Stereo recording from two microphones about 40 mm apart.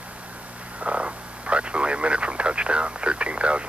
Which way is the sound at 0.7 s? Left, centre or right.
Right.